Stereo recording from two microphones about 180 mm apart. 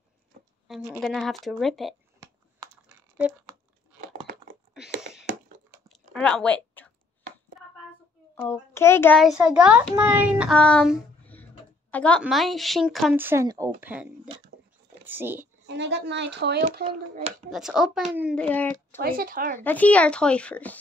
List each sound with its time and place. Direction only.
1.0 s speech: centre (ahead or behind)
4.0 s a sound: 55° right (ahead or behind)
5.9 s a sound: 5° left (ahead or behind)
7.6 s hands: centre (ahead or behind)
8.4 s a child's voice: 15° left (ahead or behind)
9.2 s a child's voice: 5° right (ahead or behind)
10.5 s a woman's voice: 5° left (ahead or behind)
13.1 s a child's voice: 10° right (ahead or behind)
15.6 s speech: 75° right (ahead or behind)
17.5 s speech: centre (ahead or behind)
18.3 s a child's voice: 5° left (ahead or behind)
19.0 s speech: 55° right (ahead or behind)
19.6 s a child's voice: 10° left (ahead or behind)